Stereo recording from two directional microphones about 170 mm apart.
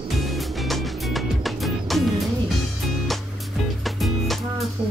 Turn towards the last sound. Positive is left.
turn(degrees=0)  # may be behind; listen again after turning